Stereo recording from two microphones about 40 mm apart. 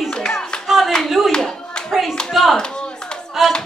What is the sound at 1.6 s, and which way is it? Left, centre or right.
Clapping, left.